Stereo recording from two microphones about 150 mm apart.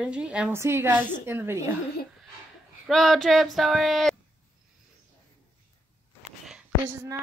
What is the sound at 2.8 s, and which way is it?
Speech, centre (ahead or behind).